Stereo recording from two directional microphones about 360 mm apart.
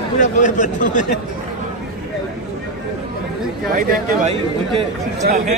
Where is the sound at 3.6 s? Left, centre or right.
Right.